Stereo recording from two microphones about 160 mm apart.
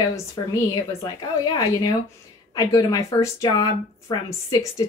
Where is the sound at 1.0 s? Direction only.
25° left (ahead or behind).